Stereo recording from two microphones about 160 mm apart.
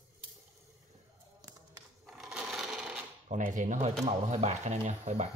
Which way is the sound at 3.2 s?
55° right (ahead or behind).